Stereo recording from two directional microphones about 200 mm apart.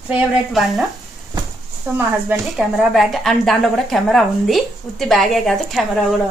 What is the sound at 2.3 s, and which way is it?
A woman's voice, centre (ahead or behind).